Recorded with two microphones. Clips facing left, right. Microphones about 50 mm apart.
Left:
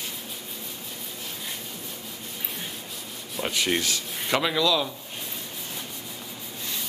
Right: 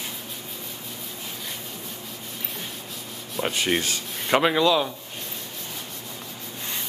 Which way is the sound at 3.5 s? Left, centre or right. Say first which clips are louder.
Even; right.